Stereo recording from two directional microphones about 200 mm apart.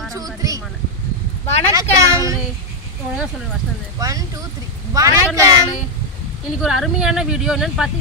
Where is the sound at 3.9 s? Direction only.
15° right (ahead or behind).